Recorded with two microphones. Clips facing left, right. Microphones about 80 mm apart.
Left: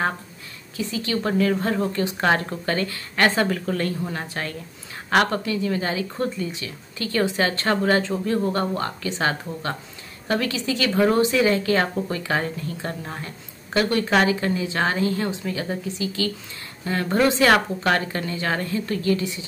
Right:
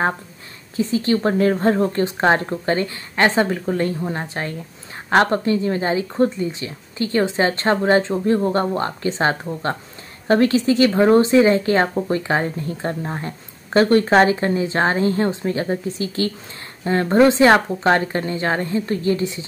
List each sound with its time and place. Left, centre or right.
0.7 s a woman's voice: right